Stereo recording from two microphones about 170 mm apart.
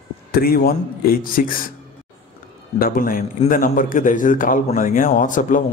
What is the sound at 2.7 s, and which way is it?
A man's voice, 60° left (ahead or behind).